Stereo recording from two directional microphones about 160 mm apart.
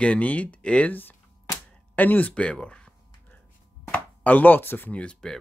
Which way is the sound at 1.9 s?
10° left (ahead or behind).